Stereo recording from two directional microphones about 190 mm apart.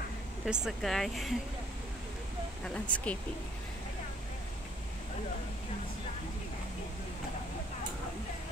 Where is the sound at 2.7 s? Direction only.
5° left (ahead or behind).